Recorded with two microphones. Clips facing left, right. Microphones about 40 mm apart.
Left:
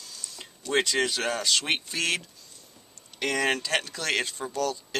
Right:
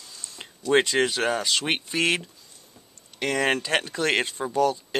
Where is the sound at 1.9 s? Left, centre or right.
Right.